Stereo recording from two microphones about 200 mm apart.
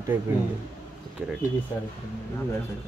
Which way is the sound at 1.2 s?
5° right (ahead or behind).